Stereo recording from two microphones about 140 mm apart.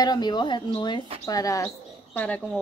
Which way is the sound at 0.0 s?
30° left (ahead or behind).